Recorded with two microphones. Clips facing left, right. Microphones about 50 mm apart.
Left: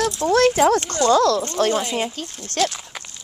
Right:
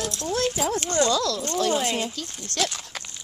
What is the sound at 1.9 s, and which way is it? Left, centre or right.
Speech, left.